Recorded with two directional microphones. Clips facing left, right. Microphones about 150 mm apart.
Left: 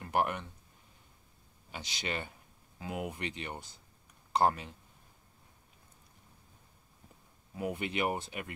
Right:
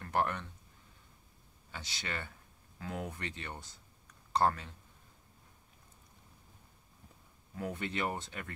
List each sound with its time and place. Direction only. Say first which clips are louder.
0.0 s speech: left 2 dB; 15° left (ahead or behind)
1.7 s speech: left 4 dB; 15° left (ahead or behind)
7.5 s speech: left 3 dB; 15° left (ahead or behind)